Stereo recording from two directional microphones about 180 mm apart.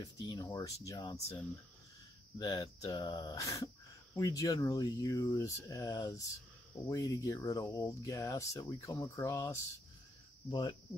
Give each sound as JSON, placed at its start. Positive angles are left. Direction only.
{"t": 0.0, "sound": "speech", "side_deg": 20}
{"t": 2.3, "sound": "speech", "side_deg": 20}